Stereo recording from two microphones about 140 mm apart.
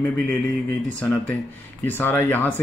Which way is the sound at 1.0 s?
10° left (ahead or behind).